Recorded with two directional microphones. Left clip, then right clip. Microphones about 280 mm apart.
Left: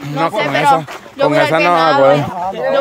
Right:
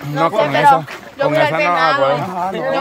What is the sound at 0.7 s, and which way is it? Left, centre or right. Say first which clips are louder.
Speech: right 1 dB; left.